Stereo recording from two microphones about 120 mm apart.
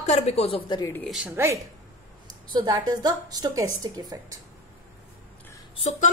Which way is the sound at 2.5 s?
35° right (ahead or behind).